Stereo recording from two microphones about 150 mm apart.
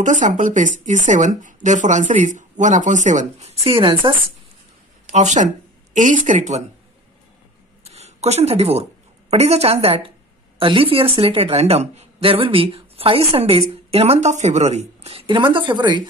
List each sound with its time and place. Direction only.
0.0 s speech: 55° right (ahead or behind); by 4.1 s 35° right (ahead or behind)
5.1 s a woman's voice: 50° right (ahead or behind)
7.8 s a sound: 45° right (ahead or behind)
9.3 s a woman's voice: 45° right (ahead or behind)